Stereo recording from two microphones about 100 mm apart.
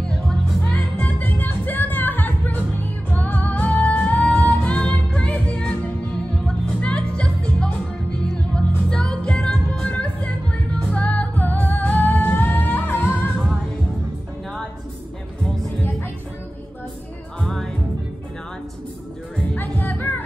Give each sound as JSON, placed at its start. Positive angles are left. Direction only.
{"t": 0.0, "sound": "music", "side_deg": 5}
{"t": 17.4, "sound": "music", "side_deg": 5}
{"t": 19.3, "sound": "music", "side_deg": 15}